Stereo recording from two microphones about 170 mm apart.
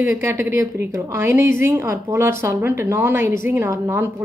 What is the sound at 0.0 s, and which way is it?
A woman's voice, 15° right (ahead or behind).